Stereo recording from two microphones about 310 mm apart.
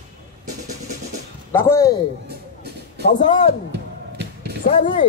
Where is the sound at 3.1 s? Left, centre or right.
Left.